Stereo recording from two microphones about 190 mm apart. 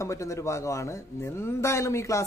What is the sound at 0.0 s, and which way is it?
Speech, 15° left (ahead or behind).